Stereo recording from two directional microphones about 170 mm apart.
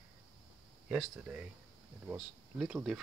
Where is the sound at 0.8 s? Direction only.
5° right (ahead or behind).